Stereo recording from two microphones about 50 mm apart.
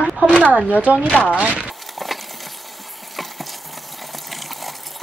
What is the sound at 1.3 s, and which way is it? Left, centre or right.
Speech, right.